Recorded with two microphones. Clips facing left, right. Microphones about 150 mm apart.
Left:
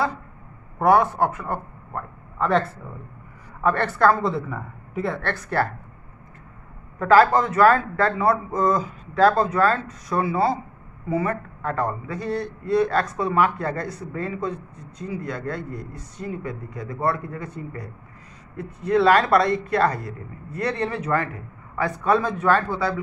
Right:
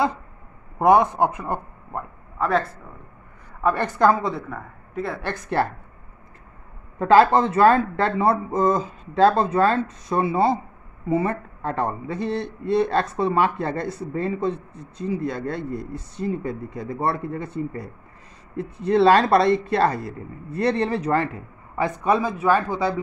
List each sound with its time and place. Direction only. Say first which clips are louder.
0.7 s a man's voice: right 1 dB; 20° right (ahead or behind)
2.3 s a man's voice: left 1 dB; centre (ahead or behind)
3.6 s speech: even; 15° right (ahead or behind)
4.2 s speech: left 2 dB; centre (ahead or behind)
5.2 s a man's voice: right 4 dB; 20° right (ahead or behind)
7.0 s a man's voice: right 1 dB; 25° right (ahead or behind)
21.7 s speech: even; 20° right (ahead or behind)